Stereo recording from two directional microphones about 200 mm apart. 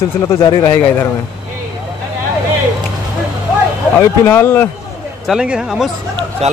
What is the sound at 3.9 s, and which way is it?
Speech, 10° left (ahead or behind).